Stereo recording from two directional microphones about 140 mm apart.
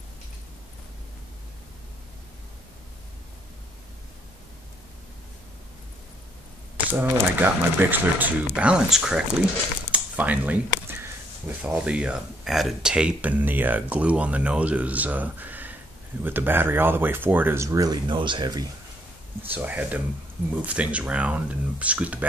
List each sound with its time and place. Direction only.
6.9 s speech: 15° right (ahead or behind); by 18.7 s 30° right (ahead or behind)
19.5 s speech: 10° right (ahead or behind)